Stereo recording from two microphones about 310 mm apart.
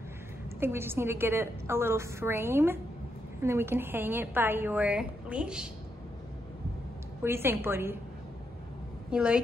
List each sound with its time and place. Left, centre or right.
0.6 s a woman's voice: centre
7.2 s a woman's voice: centre
9.1 s a woman's voice: centre